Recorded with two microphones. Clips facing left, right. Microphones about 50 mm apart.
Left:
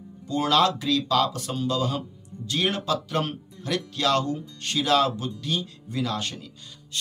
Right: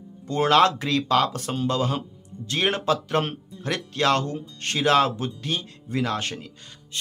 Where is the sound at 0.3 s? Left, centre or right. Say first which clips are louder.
Right 3 dB; right.